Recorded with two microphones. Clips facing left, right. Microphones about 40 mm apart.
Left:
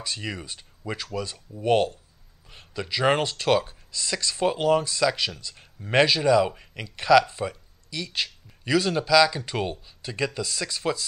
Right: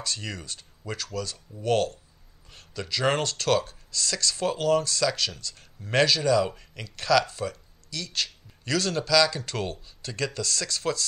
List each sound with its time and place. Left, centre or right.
0.0 s speech: centre